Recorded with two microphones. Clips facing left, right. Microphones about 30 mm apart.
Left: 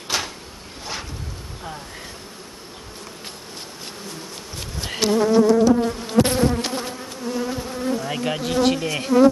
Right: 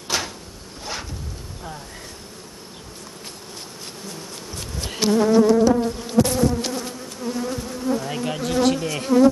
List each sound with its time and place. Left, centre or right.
0.1 s drawer open or close: centre
4.6 s bee: centre
6.1 s bee: left
7.2 s bee: centre